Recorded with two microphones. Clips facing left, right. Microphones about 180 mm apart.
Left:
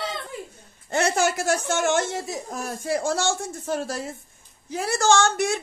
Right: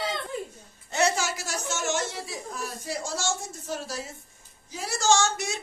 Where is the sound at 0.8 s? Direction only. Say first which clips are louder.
Left 4 dB; 55° left (ahead or behind).